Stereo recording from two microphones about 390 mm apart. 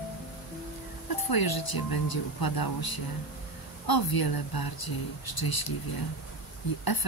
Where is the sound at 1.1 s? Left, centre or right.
Left.